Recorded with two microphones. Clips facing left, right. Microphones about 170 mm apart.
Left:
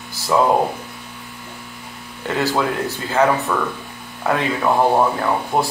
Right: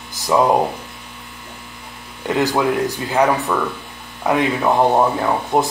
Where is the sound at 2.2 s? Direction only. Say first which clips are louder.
Right 2 dB; 15° right (ahead or behind).